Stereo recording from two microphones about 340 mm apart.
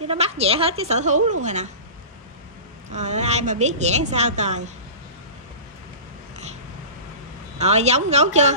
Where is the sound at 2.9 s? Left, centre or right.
Centre.